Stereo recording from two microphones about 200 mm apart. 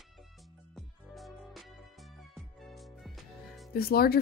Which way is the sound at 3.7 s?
50° left (ahead or behind).